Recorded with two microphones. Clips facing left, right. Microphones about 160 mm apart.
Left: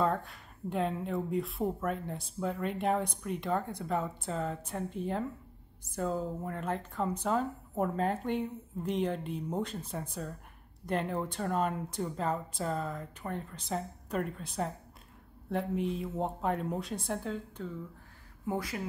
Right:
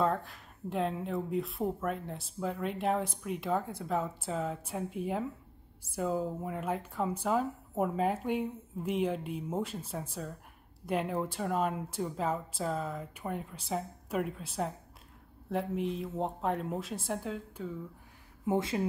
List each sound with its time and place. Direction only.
0.0 s speech: centre (ahead or behind)
18.4 s speech: 20° right (ahead or behind)